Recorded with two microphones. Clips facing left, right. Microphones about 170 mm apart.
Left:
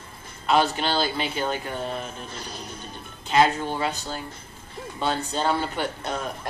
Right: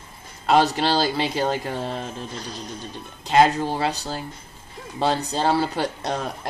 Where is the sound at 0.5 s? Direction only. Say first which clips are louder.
Right 3 dB; 40° right (ahead or behind).